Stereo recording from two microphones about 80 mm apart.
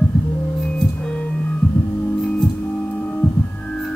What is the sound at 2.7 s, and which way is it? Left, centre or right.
Music, centre.